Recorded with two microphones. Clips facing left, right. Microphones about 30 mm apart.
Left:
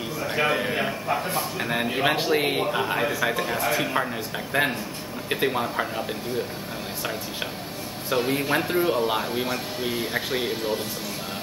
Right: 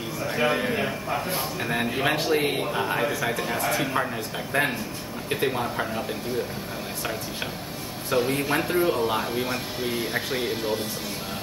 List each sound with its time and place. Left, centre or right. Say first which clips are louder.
0.2 s speech: even; centre
3.1 s speech: left 2 dB; centre
3.4 s speech: left 1 dB; centre
8.1 s speech: even; centre